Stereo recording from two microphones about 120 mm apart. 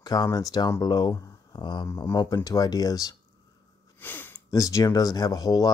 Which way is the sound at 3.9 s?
15° left (ahead or behind).